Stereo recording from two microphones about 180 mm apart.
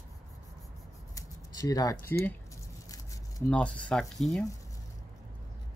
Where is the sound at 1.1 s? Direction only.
20° left (ahead or behind).